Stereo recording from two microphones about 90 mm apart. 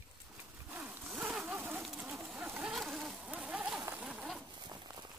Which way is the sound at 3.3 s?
15° right (ahead or behind).